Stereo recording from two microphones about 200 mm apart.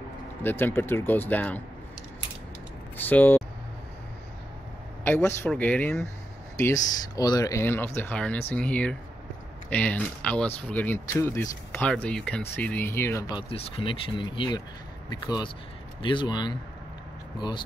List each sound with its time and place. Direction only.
0.4 s speech: 10° left (ahead or behind)
3.0 s speech: 10° left (ahead or behind)
5.0 s speech: 10° left (ahead or behind)
7.2 s speech: 20° left (ahead or behind)